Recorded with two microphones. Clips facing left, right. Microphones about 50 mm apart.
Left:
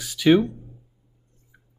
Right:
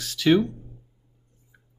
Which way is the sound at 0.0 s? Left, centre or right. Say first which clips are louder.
Left 2 dB; centre.